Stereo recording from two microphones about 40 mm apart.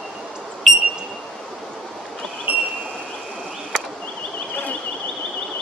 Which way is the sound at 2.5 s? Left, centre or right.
Right.